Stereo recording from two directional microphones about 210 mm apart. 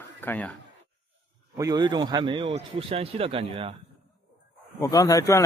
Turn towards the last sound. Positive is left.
turn(degrees=15)  # may be behind; listen again after turning